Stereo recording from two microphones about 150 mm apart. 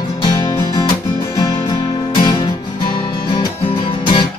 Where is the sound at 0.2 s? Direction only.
30° left (ahead or behind).